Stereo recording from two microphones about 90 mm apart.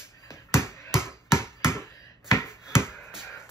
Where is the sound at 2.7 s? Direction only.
30° left (ahead or behind).